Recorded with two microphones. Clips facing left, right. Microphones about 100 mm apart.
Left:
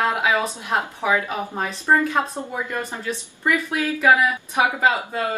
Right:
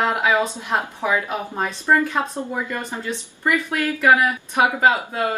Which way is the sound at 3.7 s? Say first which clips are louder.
Right 1 dB; 15° left (ahead or behind).